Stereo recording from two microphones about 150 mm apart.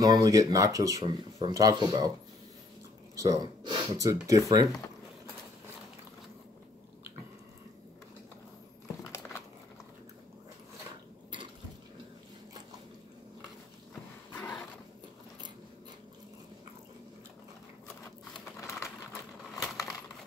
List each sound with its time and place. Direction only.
0.0 s speech: 25° right (ahead or behind)
3.2 s speech: 25° right (ahead or behind)
9.1 s biting: 20° left (ahead or behind)
14.3 s a sound: 10° left (ahead or behind)
18.6 s a sound: 20° left (ahead or behind)
19.5 s crumpling: centre (ahead or behind)